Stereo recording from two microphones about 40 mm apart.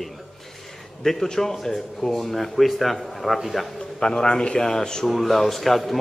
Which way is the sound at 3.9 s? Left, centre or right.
Centre.